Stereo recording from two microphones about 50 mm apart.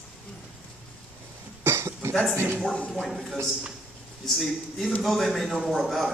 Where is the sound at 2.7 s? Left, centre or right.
Left.